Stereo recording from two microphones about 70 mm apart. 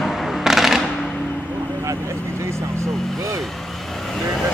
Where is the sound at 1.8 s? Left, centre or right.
Right.